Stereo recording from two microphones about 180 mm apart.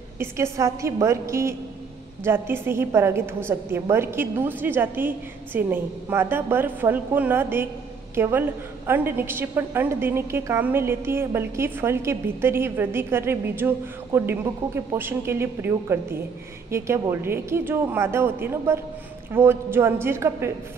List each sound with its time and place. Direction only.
0.2 s a woman's voice: 15° right (ahead or behind)